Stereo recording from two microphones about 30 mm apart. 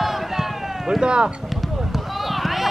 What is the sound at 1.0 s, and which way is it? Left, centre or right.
Speech, right.